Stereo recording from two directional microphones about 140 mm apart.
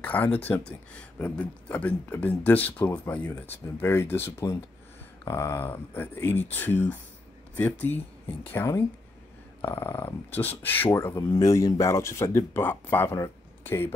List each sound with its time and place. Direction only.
0.0 s speech: 10° left (ahead or behind)